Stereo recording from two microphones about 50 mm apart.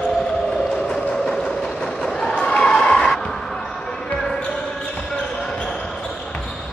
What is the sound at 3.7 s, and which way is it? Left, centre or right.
Basketball bounce, centre.